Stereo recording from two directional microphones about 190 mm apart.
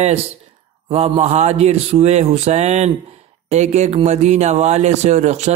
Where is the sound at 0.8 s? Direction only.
35° right (ahead or behind).